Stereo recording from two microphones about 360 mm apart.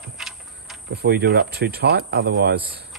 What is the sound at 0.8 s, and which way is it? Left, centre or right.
Speech, right.